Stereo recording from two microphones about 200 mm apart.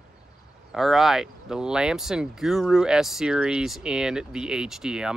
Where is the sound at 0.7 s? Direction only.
Centre (ahead or behind).